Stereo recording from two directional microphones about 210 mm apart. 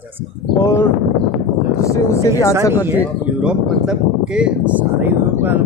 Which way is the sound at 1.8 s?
15° left (ahead or behind).